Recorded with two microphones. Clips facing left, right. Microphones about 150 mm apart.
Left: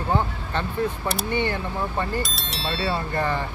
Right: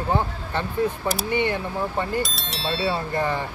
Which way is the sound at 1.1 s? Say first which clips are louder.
Right 1 dB; 5° right (ahead or behind).